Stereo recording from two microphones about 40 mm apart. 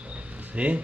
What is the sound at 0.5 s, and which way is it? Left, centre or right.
Speech, right.